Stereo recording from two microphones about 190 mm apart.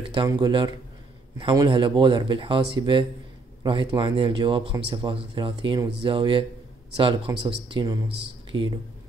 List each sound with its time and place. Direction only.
0.0 s speech: 25° right (ahead or behind)